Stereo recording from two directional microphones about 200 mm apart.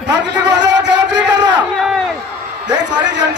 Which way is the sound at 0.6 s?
60° right (ahead or behind).